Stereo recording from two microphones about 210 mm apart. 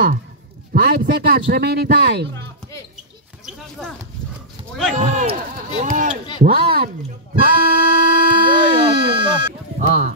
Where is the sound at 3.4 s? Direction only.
Centre (ahead or behind).